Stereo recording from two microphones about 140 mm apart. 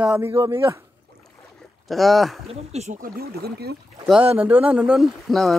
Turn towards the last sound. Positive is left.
turn(degrees=0)  # may be behind; listen again after turning